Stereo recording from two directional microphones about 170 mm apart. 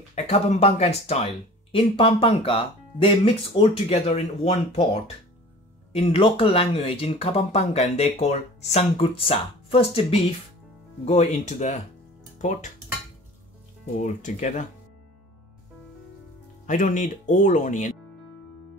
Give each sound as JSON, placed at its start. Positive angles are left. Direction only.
{"t": 0.1, "sound": "speech", "side_deg": 40}
{"t": 13.9, "sound": "speech", "side_deg": 45}
{"t": 16.6, "sound": "speech", "side_deg": 50}